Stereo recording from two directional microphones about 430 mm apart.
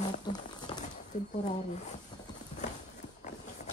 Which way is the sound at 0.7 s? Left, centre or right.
Centre.